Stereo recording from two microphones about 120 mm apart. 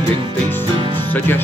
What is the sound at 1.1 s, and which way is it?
Music, 15° left (ahead or behind).